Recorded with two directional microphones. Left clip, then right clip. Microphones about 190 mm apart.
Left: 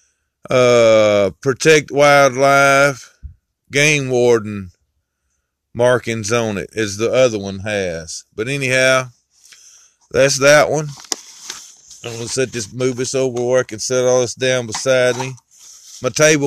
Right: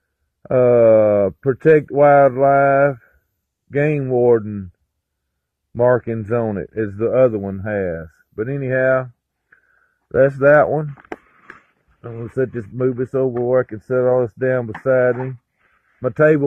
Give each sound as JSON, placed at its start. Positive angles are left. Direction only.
{"t": 0.4, "sound": "speech", "side_deg": 25}
{"t": 5.7, "sound": "speech", "side_deg": 25}
{"t": 12.0, "sound": "speech", "side_deg": 10}